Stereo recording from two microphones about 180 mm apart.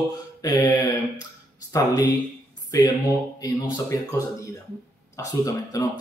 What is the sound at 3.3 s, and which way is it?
Speech, 20° left (ahead or behind).